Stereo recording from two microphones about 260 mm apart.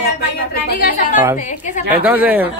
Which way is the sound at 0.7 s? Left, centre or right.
Left.